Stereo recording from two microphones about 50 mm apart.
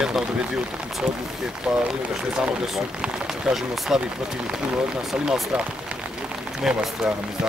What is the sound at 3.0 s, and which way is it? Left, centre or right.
Speech, centre.